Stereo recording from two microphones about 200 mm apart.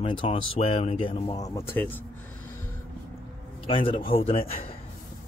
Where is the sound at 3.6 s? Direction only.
25° left (ahead or behind).